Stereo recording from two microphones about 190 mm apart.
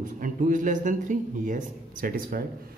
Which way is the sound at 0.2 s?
45° right (ahead or behind).